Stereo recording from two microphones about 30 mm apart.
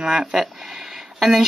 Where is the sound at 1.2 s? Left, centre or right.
Right.